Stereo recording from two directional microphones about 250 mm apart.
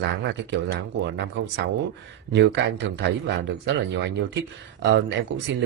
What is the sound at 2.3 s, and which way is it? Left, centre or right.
Speech, right.